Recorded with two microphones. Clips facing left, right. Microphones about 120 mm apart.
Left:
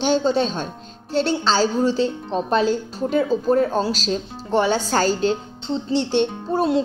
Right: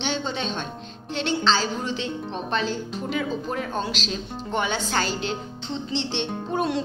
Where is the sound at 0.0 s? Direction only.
40° left (ahead or behind).